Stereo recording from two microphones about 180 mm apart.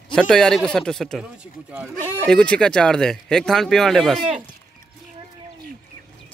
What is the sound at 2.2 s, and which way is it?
Speech, 5° left (ahead or behind).